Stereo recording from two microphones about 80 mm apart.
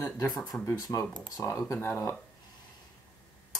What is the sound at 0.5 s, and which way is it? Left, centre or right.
Speech, centre.